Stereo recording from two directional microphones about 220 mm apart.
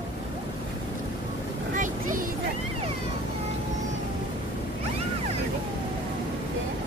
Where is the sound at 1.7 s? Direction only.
35° right (ahead or behind).